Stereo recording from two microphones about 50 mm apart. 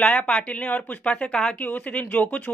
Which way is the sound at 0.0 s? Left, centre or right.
Left.